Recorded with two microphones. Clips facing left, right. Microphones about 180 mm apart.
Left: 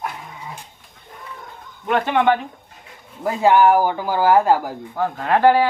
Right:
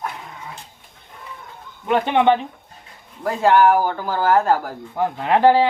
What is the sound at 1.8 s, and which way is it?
Speech, 15° right (ahead or behind).